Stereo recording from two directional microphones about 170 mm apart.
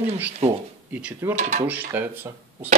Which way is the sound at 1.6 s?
10° right (ahead or behind).